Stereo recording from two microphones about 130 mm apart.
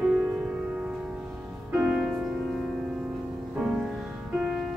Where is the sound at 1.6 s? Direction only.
5° right (ahead or behind).